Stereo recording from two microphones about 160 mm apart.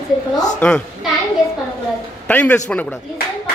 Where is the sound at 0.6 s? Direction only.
5° left (ahead or behind).